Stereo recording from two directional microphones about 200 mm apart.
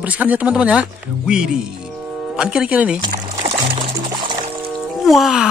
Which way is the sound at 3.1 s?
40° right (ahead or behind).